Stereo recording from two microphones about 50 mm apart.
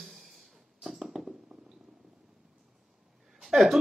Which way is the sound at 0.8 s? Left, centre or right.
Centre.